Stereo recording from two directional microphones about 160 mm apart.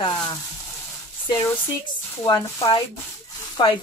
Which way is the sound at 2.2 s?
25° left (ahead or behind).